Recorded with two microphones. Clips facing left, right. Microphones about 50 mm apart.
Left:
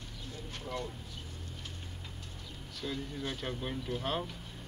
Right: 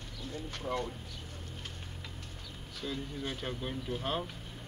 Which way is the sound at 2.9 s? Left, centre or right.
Centre.